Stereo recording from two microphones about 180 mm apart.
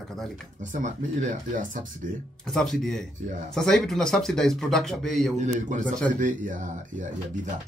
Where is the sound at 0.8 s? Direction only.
45° right (ahead or behind).